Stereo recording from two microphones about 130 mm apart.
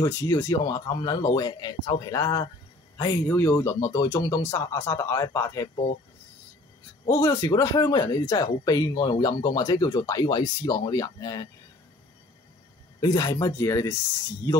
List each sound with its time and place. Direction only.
0.0 s speech: 20° left (ahead or behind)
7.1 s speech: 25° left (ahead or behind)
13.0 s speech: 30° left (ahead or behind)